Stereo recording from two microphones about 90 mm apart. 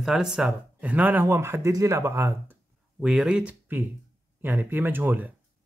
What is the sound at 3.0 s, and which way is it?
Speech, 5° right (ahead or behind).